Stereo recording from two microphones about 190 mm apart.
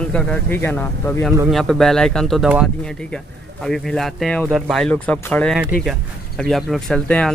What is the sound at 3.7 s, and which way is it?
Speech, centre (ahead or behind).